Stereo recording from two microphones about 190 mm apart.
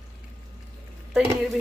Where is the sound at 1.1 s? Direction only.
Centre (ahead or behind).